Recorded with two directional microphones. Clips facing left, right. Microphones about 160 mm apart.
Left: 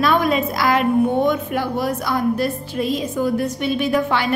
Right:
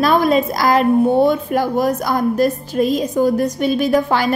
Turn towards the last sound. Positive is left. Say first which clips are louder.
# right 3 dB
turn(degrees=-40)  # may be behind; listen again after turning